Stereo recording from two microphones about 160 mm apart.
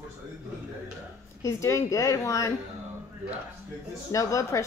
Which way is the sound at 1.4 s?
20° left (ahead or behind).